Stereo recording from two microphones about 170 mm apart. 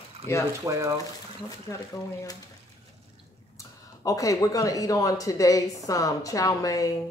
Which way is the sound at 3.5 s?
20° left (ahead or behind).